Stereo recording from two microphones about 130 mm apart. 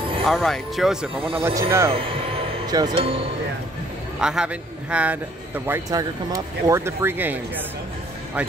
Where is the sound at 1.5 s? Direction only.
20° right (ahead or behind).